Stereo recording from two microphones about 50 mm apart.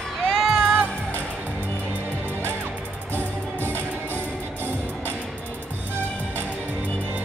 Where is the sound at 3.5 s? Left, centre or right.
Right.